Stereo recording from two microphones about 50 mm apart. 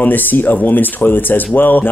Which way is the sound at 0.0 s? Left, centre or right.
Left.